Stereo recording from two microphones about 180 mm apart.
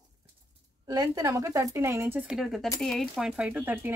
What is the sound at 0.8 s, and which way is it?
Speech, 20° right (ahead or behind).